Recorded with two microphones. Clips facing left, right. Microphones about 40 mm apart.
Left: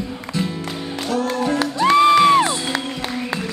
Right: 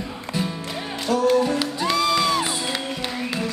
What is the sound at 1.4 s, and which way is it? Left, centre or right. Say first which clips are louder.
Music: left 5 dB; left.